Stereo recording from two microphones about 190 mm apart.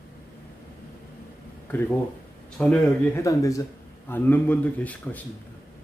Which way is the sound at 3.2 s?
15° left (ahead or behind).